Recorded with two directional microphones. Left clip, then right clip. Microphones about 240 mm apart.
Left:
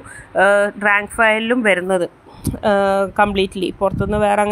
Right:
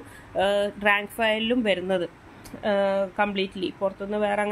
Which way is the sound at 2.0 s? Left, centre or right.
Left.